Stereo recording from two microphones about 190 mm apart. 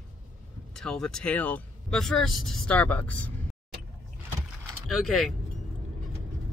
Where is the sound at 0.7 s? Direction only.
5° left (ahead or behind).